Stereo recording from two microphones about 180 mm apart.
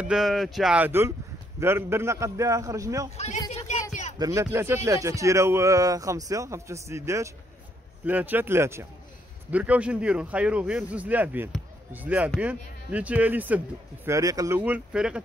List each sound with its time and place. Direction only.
0.0 s speech: centre (ahead or behind); by 3.1 s 20° right (ahead or behind)
3.5 s a sound: 40° left (ahead or behind)
4.2 s speech: 15° right (ahead or behind)
14.6 s speech: 5° right (ahead or behind)